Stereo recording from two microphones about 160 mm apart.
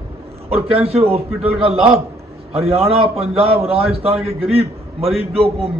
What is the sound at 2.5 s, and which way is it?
A man's voice, 40° right (ahead or behind).